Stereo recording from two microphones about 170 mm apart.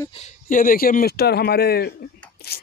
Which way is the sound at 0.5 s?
55° left (ahead or behind).